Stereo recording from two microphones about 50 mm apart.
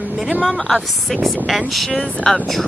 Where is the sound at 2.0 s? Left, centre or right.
Centre.